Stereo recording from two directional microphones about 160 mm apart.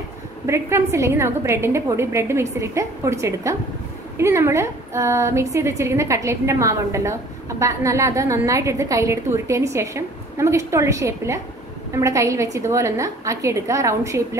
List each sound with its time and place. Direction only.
0.5 s a woman's voice: 15° right (ahead or behind)